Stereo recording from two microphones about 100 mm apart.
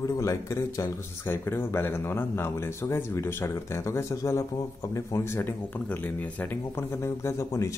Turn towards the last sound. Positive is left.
turn(degrees=30)  # may be behind; listen again after turning